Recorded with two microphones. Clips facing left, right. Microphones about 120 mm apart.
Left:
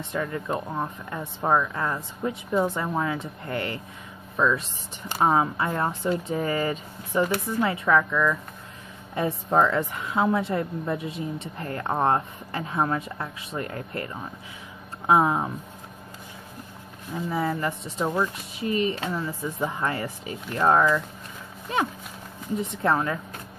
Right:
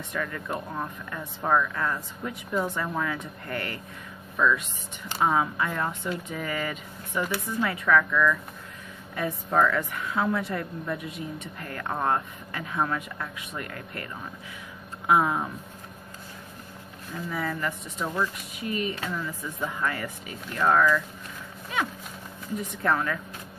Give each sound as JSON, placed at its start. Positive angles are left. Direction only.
{"t": 0.0, "sound": "a woman's voice", "side_deg": 25}
{"t": 5.2, "sound": "a woman's voice", "side_deg": 30}
{"t": 17.1, "sound": "a woman's voice", "side_deg": 25}
{"t": 22.6, "sound": "a woman's voice", "side_deg": 25}